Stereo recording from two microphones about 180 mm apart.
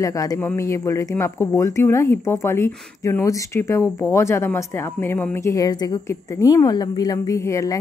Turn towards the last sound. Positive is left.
turn(degrees=15)  # may be behind; listen again after turning